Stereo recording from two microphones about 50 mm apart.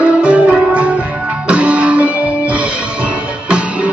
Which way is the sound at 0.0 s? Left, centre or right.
Right.